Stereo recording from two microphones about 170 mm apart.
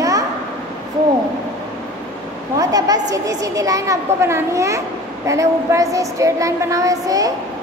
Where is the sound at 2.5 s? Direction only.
20° right (ahead or behind).